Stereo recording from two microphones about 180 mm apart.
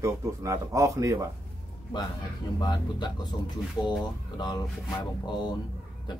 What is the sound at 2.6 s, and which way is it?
Speech, 25° left (ahead or behind).